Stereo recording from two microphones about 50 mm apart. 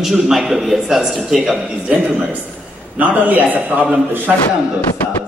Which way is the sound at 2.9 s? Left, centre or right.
Right.